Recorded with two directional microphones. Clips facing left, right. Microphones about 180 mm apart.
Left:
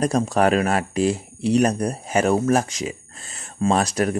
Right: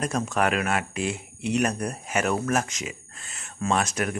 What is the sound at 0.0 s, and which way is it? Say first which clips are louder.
Speech: left 6 dB; 35° left (ahead or behind).